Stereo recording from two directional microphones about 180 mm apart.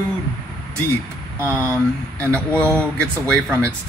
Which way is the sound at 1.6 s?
15° right (ahead or behind).